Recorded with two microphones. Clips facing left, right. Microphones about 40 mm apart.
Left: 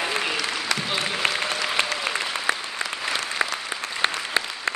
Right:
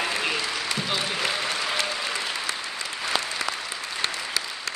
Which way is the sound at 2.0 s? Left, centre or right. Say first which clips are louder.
Left 4 dB; left.